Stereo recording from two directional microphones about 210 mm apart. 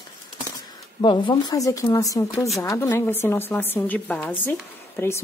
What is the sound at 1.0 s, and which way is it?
A woman's voice, 20° left (ahead or behind).